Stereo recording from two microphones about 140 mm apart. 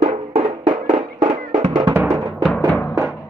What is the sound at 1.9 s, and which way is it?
Music, 15° right (ahead or behind).